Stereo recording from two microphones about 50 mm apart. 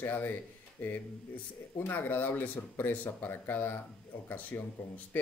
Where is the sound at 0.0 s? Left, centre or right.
Left.